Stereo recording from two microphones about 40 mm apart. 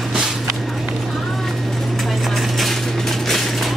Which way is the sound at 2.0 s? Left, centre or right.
Centre.